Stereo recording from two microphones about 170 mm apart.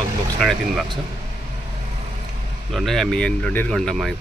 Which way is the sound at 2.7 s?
Centre (ahead or behind).